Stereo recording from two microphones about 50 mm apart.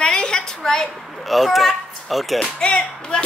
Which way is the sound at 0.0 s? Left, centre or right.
Centre.